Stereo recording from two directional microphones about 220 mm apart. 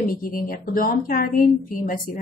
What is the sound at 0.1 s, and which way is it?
A woman's voice, 40° left (ahead or behind).